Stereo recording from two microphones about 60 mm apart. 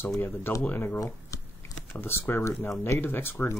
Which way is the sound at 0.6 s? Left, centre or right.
Left.